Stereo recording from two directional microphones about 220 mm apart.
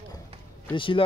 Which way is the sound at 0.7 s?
20° left (ahead or behind).